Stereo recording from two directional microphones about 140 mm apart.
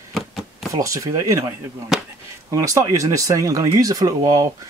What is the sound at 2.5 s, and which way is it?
Speech, 25° right (ahead or behind).